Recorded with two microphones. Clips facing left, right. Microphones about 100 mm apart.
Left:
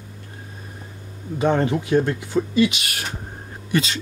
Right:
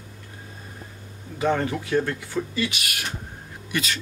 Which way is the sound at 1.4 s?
20° left (ahead or behind).